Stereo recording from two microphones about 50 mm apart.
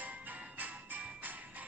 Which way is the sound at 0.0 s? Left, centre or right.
Right.